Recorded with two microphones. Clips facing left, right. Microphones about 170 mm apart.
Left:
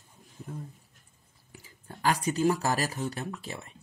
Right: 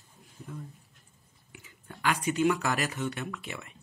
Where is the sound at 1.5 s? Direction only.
35° left (ahead or behind).